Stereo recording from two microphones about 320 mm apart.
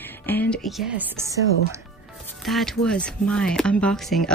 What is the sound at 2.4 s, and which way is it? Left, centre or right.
Speech, centre.